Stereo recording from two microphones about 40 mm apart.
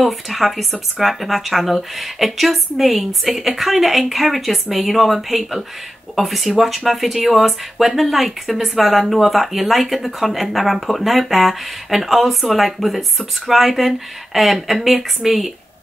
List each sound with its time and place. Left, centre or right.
0.0 s speech: centre